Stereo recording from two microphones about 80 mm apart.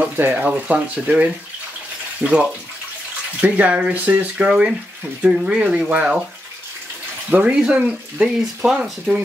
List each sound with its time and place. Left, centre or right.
0.0 s speech: right
7.5 s speech: centre